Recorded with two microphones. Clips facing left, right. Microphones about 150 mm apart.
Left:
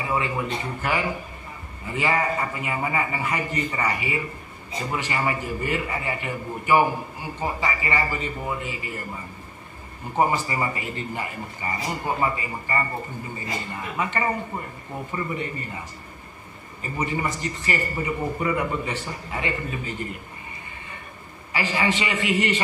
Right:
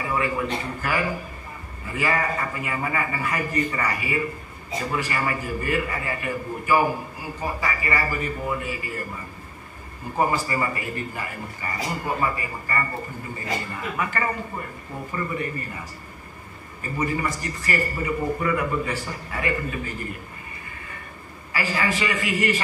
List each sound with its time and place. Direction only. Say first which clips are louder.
0.1 s a man's voice: right 1 dB; 20° left (ahead or behind)
10.1 s a man's voice: left 1 dB; 20° left (ahead or behind)
13.9 s a man's voice: left 2 dB; 20° left (ahead or behind)
16.8 s a man's voice: right 1 dB; 20° left (ahead or behind)
21.5 s a man's voice: left 1 dB; 20° left (ahead or behind)